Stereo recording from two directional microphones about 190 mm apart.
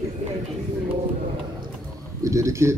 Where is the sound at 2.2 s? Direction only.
15° right (ahead or behind).